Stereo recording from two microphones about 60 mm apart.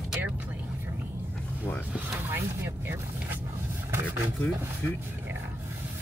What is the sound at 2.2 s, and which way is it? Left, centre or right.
Speech, right.